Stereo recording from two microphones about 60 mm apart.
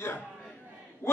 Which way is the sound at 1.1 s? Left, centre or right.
Left.